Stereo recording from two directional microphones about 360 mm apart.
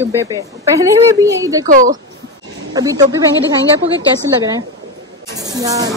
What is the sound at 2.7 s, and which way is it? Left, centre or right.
Speech, centre.